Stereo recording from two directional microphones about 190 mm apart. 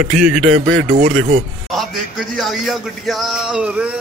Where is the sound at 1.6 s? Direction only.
Centre (ahead or behind).